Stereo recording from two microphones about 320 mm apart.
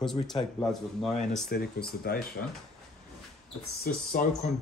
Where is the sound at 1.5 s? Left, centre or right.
Left.